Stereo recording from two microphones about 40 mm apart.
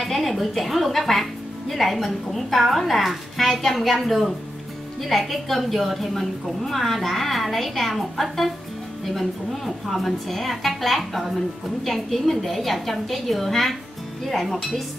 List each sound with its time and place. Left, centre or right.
0.0 s speech: centre